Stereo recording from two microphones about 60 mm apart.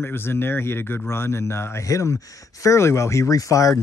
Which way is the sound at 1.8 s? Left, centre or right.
Left.